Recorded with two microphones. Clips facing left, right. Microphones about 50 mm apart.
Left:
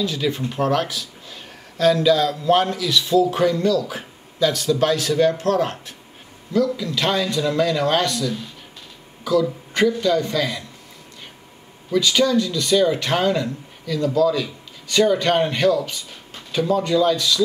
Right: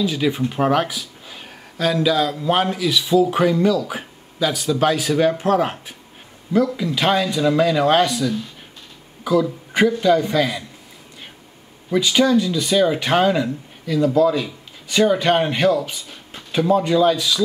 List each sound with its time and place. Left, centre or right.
0.0 s a man's voice: centre
11.9 s speech: centre